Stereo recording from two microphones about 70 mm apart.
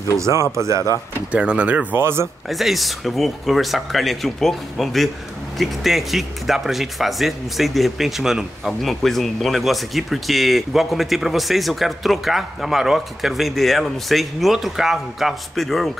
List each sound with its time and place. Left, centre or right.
0.2 s speech: right
1.3 s speech: centre
2.0 s speech: right
2.5 s speech: centre